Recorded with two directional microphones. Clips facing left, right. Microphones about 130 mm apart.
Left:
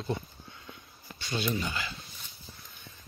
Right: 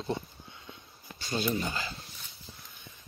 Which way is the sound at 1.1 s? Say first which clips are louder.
Right 1 dB; 40° right (ahead or behind).